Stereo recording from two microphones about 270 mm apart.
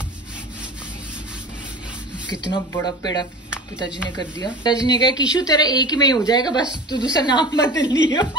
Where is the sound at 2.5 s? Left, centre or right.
Centre.